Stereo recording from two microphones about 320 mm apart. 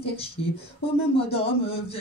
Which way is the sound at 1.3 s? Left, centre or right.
Centre.